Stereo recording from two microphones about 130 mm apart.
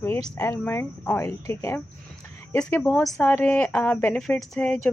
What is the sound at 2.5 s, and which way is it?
A woman's voice, 15° left (ahead or behind).